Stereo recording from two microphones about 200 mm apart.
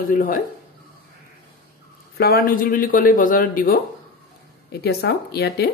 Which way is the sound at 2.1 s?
50° left (ahead or behind).